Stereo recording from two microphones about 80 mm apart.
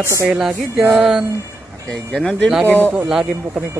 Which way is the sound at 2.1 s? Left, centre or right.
Centre.